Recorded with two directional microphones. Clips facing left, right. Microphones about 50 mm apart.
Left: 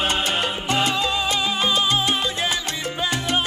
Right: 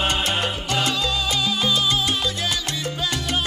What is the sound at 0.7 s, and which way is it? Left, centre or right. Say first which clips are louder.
Music: left 4 dB; left.